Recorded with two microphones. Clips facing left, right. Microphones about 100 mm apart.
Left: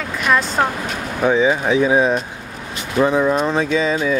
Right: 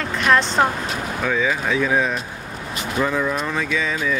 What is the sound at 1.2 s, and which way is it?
Speech, 30° left (ahead or behind).